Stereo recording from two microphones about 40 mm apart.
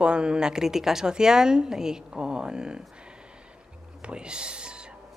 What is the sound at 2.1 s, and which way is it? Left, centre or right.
Speech, right.